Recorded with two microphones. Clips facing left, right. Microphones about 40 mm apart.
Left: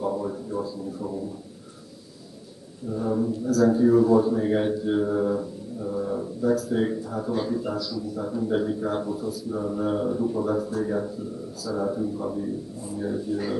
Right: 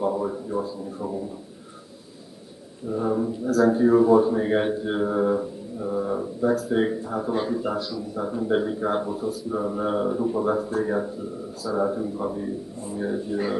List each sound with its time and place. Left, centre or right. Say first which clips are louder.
0.0 s a man's voice: right 3 dB; right
2.9 s speech: right 1 dB; right
3.4 s speech: right 1 dB; right